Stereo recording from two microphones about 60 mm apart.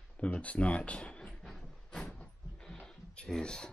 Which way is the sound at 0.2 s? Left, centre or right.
Left.